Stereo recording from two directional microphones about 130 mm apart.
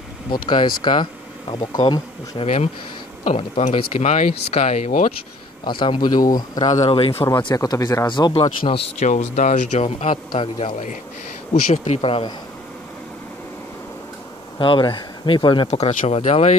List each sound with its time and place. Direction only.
0.3 s speech: 35° left (ahead or behind)
4.0 s speech: 65° left (ahead or behind)
4.3 s speech: 55° left (ahead or behind)
5.7 s speech: 40° left (ahead or behind)
6.9 s speech: 45° left (ahead or behind)
7.2 s speech: 30° left (ahead or behind)
8.6 s speech: 55° left (ahead or behind)
11.7 s speech: 50° left (ahead or behind)
14.6 s speech: 40° left (ahead or behind)
16.1 s speech: 55° left (ahead or behind)